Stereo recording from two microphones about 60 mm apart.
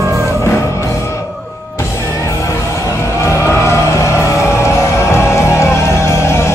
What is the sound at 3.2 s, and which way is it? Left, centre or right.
Vehicle, left.